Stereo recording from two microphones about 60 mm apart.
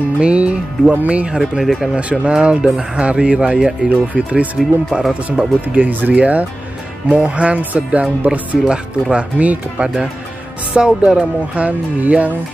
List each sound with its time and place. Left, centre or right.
0.2 s speech: centre
1.6 s speech: centre
2.0 s speech: right
5.0 s speech: centre
5.7 s speech: right